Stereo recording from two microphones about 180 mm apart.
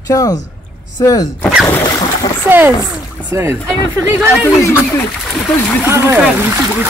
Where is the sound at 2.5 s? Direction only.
10° right (ahead or behind).